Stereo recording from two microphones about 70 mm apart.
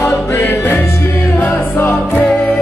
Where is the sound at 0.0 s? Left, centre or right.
Left.